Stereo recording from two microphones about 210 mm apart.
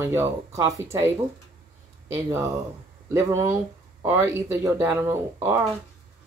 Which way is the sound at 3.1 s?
15° right (ahead or behind).